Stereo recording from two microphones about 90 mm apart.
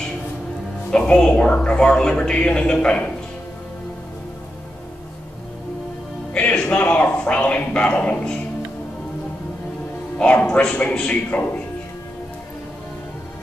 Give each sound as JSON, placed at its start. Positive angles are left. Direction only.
{"t": 0.8, "sound": "a man's voice", "side_deg": 10}
{"t": 6.3, "sound": "a sound", "side_deg": 10}
{"t": 10.1, "sound": "a man's voice", "side_deg": 15}